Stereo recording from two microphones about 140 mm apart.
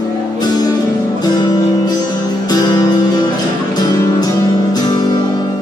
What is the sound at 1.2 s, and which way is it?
Music, 30° left (ahead or behind).